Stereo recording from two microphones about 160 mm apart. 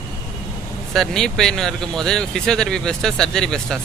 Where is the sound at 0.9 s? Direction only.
5° left (ahead or behind).